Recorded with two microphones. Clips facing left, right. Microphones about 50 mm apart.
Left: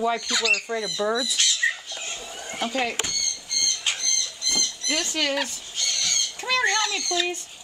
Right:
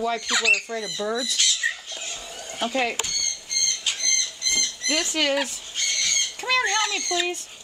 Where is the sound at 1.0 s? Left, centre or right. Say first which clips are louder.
Left 3 dB; left.